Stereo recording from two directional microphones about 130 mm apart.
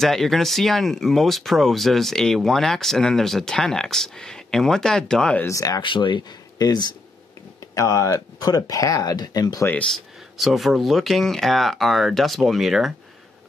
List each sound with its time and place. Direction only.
0.0 s speech: centre (ahead or behind)
5.4 s speech: 25° left (ahead or behind)
9.8 s speech: centre (ahead or behind)